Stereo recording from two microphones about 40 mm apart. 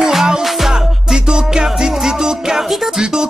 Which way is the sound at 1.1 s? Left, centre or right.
Centre.